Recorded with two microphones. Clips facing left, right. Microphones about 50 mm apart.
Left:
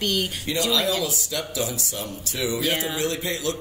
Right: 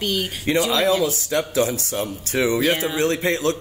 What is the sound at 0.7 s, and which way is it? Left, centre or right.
Speech, right.